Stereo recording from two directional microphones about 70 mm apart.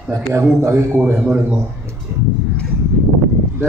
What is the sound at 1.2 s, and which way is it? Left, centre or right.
Speech, right.